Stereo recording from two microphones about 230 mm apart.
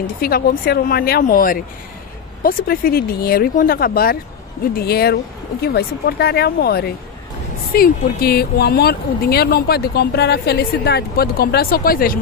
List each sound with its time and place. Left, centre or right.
0.0 s speech: left